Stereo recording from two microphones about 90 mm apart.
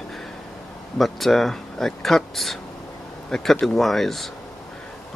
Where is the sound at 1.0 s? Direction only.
Centre (ahead or behind).